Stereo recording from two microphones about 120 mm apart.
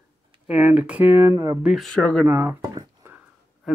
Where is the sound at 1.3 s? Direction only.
25° right (ahead or behind).